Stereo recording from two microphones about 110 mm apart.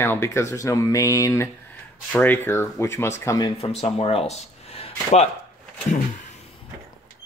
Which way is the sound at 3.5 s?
70° left (ahead or behind).